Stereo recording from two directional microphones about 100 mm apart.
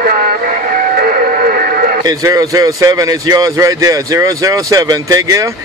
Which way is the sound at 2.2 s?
35° right (ahead or behind).